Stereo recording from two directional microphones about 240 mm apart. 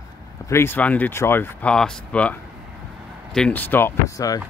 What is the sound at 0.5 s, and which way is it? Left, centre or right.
Speech, centre.